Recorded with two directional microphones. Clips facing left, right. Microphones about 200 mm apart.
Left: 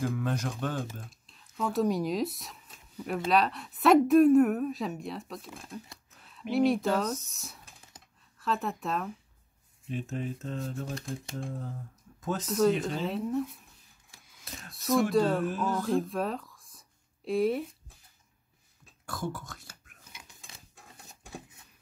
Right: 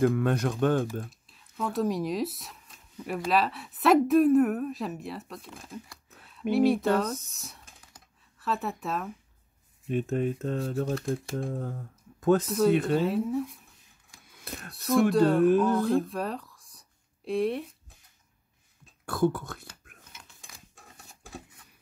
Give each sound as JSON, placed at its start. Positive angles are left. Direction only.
{"t": 0.0, "sound": "speech", "side_deg": -60}
{"t": 1.2, "sound": "a sound", "side_deg": 0}
{"t": 3.3, "sound": "a woman's voice", "side_deg": 0}
{"t": 6.5, "sound": "a woman's voice", "side_deg": 0}
{"t": 9.8, "sound": "speech", "side_deg": -55}
{"t": 12.2, "sound": "speech", "side_deg": -55}
{"t": 12.4, "sound": "a woman's voice", "side_deg": 0}
{"t": 12.7, "sound": "speech", "side_deg": -60}
{"t": 13.0, "sound": "a woman's voice", "side_deg": 0}
{"t": 14.3, "sound": "a sound", "side_deg": -60}
{"t": 14.7, "sound": "a woman's voice", "side_deg": 0}
{"t": 19.0, "sound": "speech", "side_deg": -60}
{"t": 20.5, "sound": "keys jangling", "side_deg": 25}